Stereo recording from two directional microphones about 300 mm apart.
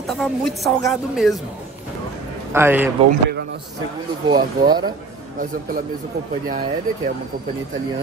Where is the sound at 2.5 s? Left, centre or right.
Centre.